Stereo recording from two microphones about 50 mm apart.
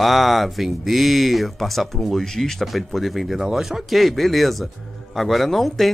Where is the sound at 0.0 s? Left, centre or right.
Centre.